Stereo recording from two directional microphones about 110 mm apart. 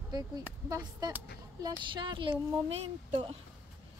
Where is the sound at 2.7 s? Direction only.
60° right (ahead or behind).